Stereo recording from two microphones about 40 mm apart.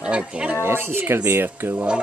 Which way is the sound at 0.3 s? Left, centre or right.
Right.